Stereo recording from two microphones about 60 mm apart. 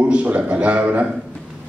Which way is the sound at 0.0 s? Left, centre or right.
Centre.